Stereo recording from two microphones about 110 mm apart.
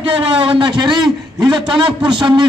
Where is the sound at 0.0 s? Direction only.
55° right (ahead or behind).